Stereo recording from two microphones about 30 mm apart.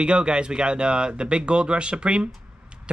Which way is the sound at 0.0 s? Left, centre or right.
Right.